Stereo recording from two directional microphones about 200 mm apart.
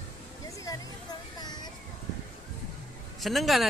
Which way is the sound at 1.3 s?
20° left (ahead or behind).